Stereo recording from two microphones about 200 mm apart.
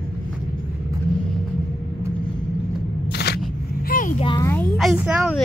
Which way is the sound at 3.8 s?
45° left (ahead or behind).